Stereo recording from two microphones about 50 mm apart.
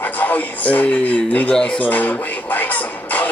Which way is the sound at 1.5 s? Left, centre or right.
Left.